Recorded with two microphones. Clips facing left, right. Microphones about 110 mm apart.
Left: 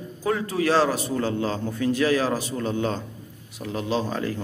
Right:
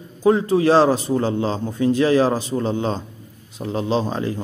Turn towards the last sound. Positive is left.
turn(degrees=-25)  # may be behind; listen again after turning